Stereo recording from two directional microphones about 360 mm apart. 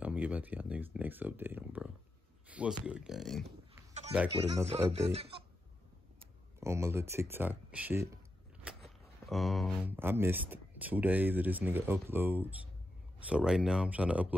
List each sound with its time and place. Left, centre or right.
0.0 s speech: centre
4.5 s speech: centre
6.6 s speech: centre